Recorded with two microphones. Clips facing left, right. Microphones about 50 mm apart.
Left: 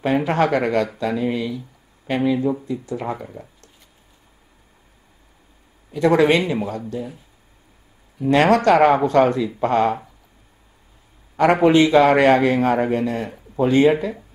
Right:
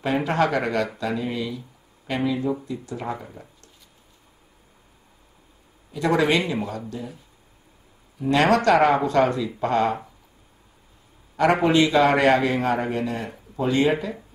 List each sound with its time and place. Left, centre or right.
0.0 s speech: left
5.9 s speech: left
8.2 s speech: left
11.6 s speech: left